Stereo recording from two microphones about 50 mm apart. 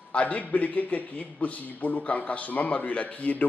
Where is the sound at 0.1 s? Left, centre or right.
Left.